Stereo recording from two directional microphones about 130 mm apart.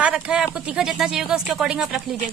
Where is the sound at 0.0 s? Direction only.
5° right (ahead or behind).